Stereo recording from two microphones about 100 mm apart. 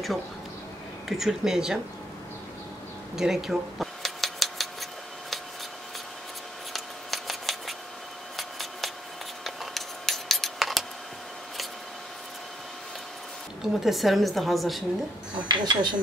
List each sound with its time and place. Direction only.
1.0 s a woman's voice: 5° right (ahead or behind)
3.2 s a sound: 5° right (ahead or behind)
6.7 s scissors: centre (ahead or behind)
8.4 s a sound: centre (ahead or behind)
13.6 s a woman's voice: centre (ahead or behind)
15.4 s speech: 50° right (ahead or behind)